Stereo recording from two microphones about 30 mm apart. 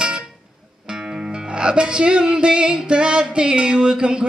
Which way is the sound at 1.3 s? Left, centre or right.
Right.